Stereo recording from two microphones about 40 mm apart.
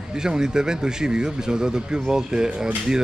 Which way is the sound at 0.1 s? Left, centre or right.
Centre.